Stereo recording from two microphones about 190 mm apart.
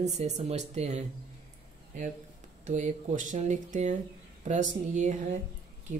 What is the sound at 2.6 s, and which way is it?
Speech, 40° right (ahead or behind).